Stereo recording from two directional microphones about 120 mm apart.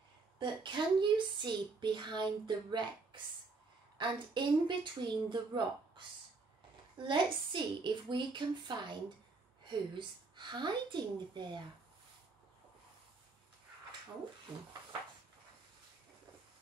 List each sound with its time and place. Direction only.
0.4 s speech: 40° right (ahead or behind)